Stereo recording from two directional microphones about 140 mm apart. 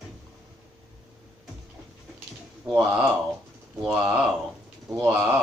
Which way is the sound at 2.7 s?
20° right (ahead or behind).